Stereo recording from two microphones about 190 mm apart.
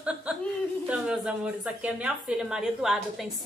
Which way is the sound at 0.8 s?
5° right (ahead or behind).